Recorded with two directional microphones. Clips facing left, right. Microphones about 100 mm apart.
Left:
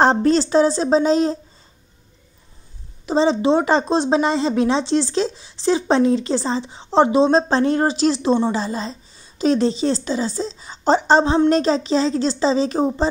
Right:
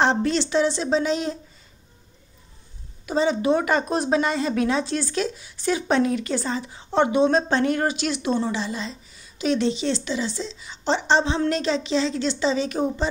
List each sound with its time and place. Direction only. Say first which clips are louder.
0.0 s speech: left 6 dB; 40° left (ahead or behind)
3.1 s speech: left 4 dB; 30° left (ahead or behind)